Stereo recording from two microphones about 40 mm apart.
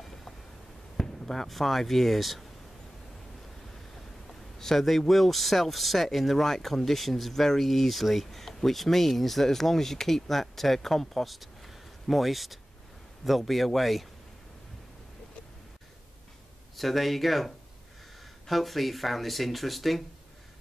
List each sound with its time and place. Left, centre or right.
0.9 s speech: centre
4.3 s a man's voice: centre
16.7 s a man's voice: centre